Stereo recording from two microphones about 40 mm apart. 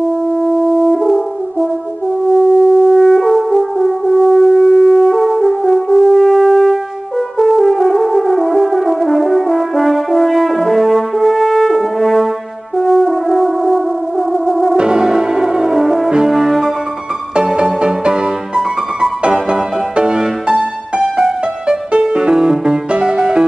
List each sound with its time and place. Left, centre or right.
0.3 s french horn: centre
14.8 s music: centre
17.6 s music: right